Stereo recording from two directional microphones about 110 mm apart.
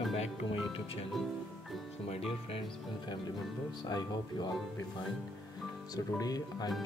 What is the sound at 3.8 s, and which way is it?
Speech, 40° left (ahead or behind).